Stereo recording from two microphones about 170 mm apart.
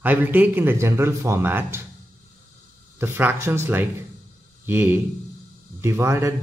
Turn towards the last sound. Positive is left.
turn(degrees=-15)  # may be behind; listen again after turning